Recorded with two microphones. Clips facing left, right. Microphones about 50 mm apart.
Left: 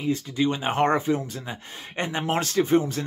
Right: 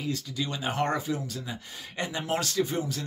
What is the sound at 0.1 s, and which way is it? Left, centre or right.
Speech, left.